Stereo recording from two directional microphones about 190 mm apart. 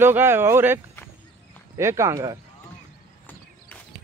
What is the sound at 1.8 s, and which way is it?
Speech, 15° right (ahead or behind).